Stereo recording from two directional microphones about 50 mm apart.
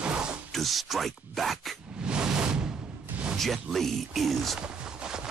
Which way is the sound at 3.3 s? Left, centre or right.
Centre.